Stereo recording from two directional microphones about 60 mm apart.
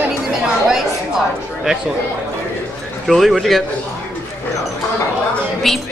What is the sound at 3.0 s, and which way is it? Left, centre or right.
Speech, centre.